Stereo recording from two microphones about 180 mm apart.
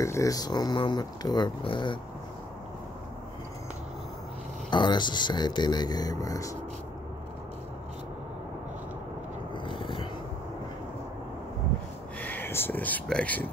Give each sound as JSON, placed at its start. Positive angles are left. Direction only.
{"t": 0.0, "sound": "speech", "side_deg": 15}
{"t": 4.6, "sound": "speech", "side_deg": 25}
{"t": 9.7, "sound": "a sound", "side_deg": 25}
{"t": 12.2, "sound": "speech", "side_deg": 10}